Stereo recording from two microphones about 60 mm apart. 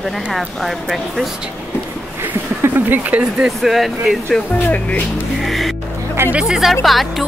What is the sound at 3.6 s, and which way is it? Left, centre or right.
Speech, centre.